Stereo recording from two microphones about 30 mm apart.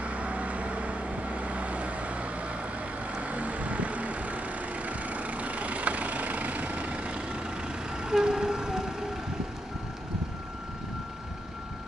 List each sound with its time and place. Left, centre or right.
0.0 s vehicle: right